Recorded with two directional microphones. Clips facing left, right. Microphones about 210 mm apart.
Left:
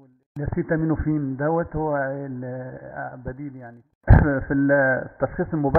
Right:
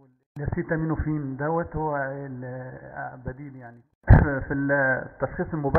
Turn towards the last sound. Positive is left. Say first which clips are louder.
# left 4 dB
turn(degrees=45)  # may be behind; listen again after turning